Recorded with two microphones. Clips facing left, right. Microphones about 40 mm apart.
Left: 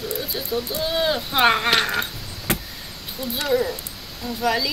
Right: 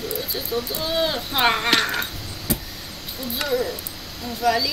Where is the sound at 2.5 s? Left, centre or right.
Left.